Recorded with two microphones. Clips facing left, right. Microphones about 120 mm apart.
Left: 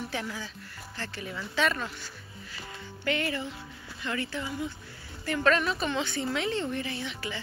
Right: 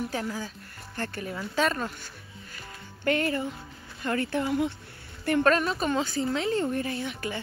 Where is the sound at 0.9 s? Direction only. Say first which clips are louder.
Right 5 dB; 50° right (ahead or behind).